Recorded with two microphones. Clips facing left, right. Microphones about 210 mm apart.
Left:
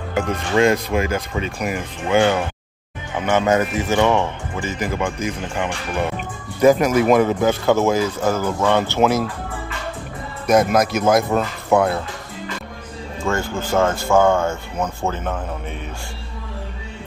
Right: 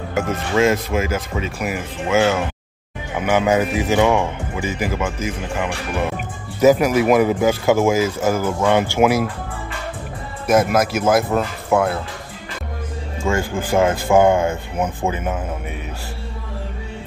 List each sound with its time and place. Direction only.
0.1 s speech: 5° right (ahead or behind)
6.1 s music: 5° right (ahead or behind)
7.1 s speech: 10° right (ahead or behind)
10.4 s speech: 5° right (ahead or behind)
13.3 s speech: 15° right (ahead or behind)